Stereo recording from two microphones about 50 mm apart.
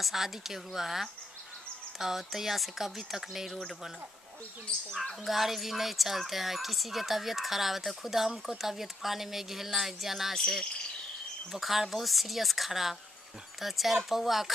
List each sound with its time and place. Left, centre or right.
0.0 s speech: centre
5.2 s speech: centre
10.3 s cricket: centre
11.5 s speech: centre